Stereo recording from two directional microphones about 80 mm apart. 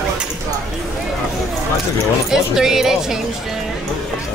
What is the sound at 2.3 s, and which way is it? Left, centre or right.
Speech, centre.